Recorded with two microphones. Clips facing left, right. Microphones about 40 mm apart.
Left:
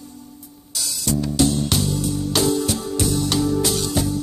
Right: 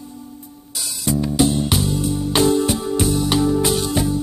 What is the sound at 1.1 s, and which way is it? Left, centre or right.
Music, right.